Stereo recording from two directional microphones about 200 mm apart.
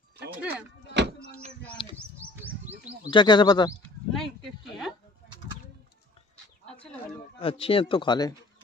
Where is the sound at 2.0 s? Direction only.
10° right (ahead or behind).